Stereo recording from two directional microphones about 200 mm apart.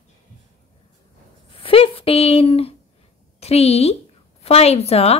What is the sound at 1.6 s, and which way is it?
A woman's voice, 30° left (ahead or behind).